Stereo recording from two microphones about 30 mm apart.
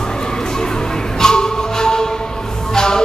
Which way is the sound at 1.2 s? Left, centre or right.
Left.